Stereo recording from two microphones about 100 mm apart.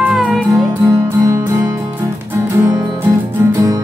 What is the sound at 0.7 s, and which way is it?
Music, 30° right (ahead or behind).